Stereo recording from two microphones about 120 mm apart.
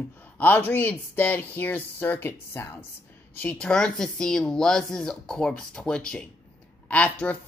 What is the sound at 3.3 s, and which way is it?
Speech, 10° left (ahead or behind).